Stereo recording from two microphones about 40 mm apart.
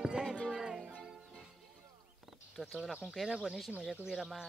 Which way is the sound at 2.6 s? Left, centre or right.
Centre.